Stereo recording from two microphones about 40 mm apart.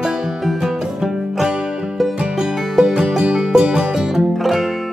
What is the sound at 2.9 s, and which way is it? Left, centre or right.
Music, centre.